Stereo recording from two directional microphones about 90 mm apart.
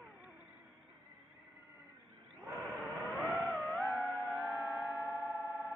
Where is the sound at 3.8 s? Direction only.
5° left (ahead or behind).